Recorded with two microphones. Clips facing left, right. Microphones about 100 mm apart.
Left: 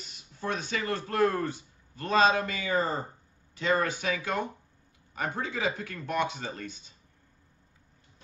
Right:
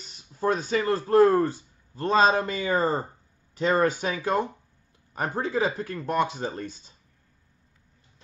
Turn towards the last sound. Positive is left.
turn(degrees=-35)  # may be behind; listen again after turning